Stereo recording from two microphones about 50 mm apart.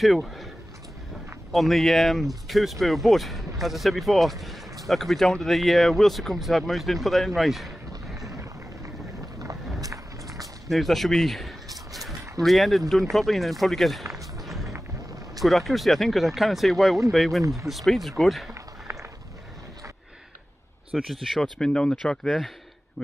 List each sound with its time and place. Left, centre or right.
0.0 s speech: centre
1.5 s speech: centre
10.2 s a sound: centre
13.1 s speech: centre
14.4 s music: centre
15.4 s speech: centre
18.9 s a sound: right
20.9 s speech: centre
21.5 s speech: centre